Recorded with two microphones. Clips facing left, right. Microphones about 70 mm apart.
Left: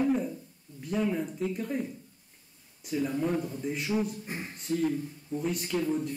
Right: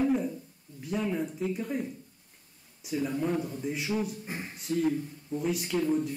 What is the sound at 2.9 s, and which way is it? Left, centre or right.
A man's voice, centre.